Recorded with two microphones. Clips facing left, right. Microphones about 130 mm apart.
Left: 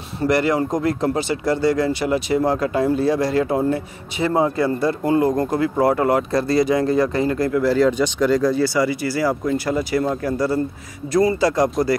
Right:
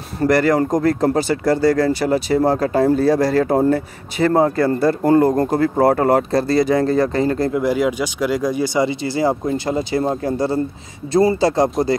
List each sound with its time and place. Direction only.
0.2 s speech: 40° right (ahead or behind); by 11.7 s 25° right (ahead or behind)